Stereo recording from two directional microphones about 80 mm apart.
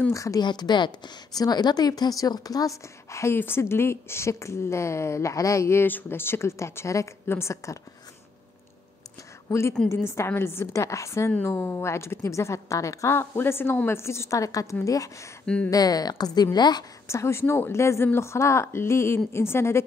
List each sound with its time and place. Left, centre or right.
0.1 s a woman's voice: left
0.4 s a woman's voice: left
3.1 s speech: left
9.5 s speech: left
13.1 s a woman's voice: left
15.4 s speech: centre
15.7 s a woman's voice: left
17.1 s speech: left